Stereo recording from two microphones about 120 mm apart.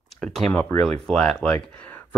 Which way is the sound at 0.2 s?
5° left (ahead or behind).